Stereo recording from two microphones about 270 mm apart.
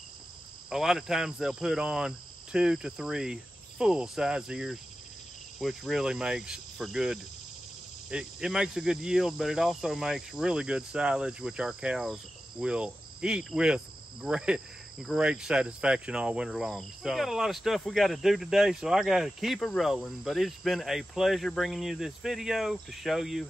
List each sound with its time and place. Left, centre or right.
0.7 s speech: centre